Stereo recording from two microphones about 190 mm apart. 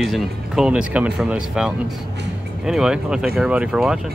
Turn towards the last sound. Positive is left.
turn(degrees=0)  # may be behind; listen again after turning